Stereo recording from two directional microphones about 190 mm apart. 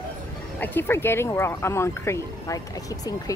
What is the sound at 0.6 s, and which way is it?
Speech, 10° left (ahead or behind).